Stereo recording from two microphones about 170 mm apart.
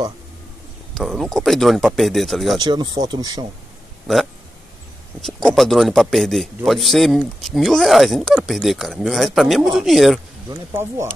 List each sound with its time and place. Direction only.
0.9 s a man's voice: centre (ahead or behind)
2.6 s speech: 25° right (ahead or behind)
5.2 s a man's voice: centre (ahead or behind)
10.5 s speech: 15° right (ahead or behind)